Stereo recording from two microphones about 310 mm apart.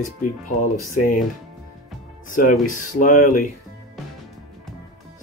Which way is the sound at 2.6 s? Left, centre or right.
Left.